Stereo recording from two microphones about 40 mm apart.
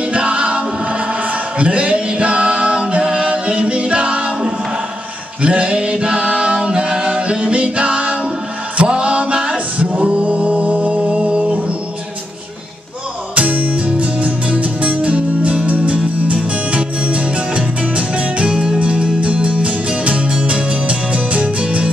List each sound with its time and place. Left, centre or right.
0.1 s music: right
2.9 s a capella: right
5.4 s music: right
13.3 s music: right
19.2 s music: right